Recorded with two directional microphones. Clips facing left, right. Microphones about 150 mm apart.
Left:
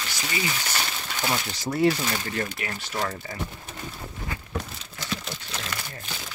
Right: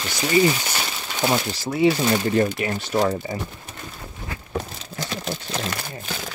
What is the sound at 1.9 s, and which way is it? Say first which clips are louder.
Speech: right 10 dB; 25° right (ahead or behind).